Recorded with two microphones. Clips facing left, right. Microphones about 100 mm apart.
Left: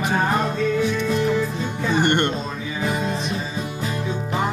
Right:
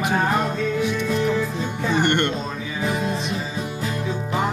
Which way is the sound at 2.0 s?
15° left (ahead or behind).